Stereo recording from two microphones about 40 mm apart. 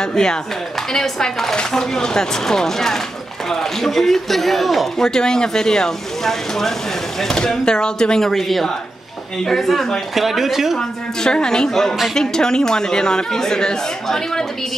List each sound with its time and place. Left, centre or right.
0.0 s speech: centre
5.0 s speech: centre
7.3 s speech: centre
8.3 s speech: centre
10.8 s speech: centre